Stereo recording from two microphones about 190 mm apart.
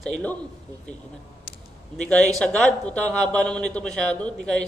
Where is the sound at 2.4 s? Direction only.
5° left (ahead or behind).